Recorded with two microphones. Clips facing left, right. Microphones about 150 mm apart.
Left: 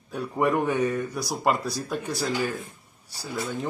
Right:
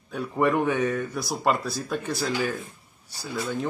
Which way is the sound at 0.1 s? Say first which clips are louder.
Right 1 dB; 5° left (ahead or behind).